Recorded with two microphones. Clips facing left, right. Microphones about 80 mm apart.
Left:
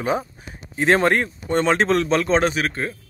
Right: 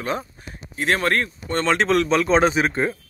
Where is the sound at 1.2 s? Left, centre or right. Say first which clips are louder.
Left 3 dB; centre.